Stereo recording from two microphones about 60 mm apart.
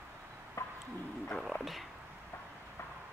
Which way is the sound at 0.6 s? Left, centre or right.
Left.